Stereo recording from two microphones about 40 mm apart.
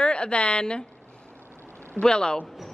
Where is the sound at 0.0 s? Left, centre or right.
Left.